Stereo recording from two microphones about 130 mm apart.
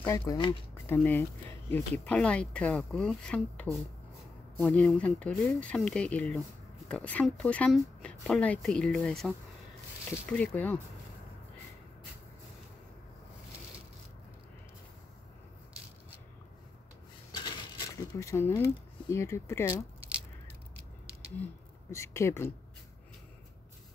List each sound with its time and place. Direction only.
0.0 s speech: 20° left (ahead or behind)
0.4 s speech: 40° left (ahead or behind)
0.8 s speech: 15° left (ahead or behind)
17.3 s a sound: 30° left (ahead or behind)
21.9 s speech: 20° left (ahead or behind)